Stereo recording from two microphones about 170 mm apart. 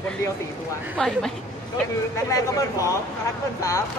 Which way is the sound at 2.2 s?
20° left (ahead or behind).